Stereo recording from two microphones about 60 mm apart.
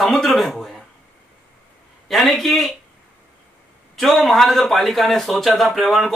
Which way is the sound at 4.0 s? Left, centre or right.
Centre.